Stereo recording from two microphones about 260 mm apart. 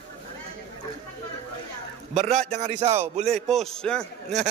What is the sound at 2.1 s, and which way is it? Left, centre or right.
Speech, right.